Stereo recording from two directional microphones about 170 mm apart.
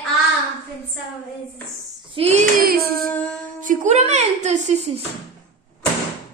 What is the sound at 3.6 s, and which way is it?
A woman's voice, 45° right (ahead or behind).